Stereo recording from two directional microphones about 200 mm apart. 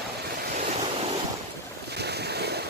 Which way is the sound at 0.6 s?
30° right (ahead or behind).